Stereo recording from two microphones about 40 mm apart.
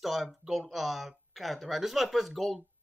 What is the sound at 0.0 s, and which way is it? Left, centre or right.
Speech, centre.